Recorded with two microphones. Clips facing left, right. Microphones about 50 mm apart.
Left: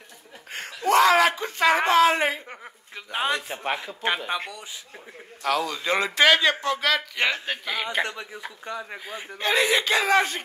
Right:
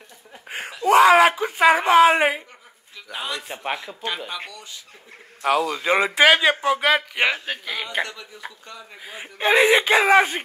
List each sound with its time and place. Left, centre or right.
0.5 s speech: centre
3.1 s speech: left
3.3 s speech: centre
4.0 s speech: left
5.7 s speech: centre
7.3 s speech: centre
8.0 s speech: left
9.2 s speech: right